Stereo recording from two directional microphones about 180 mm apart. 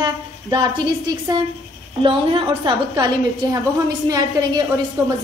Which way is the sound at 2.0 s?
25° right (ahead or behind).